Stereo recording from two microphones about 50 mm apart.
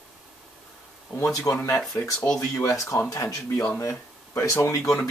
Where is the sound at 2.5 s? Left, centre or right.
Left.